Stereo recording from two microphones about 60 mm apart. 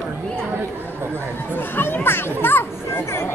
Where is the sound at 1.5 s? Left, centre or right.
Left.